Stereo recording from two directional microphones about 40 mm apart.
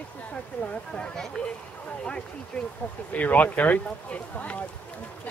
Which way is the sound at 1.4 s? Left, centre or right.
Left.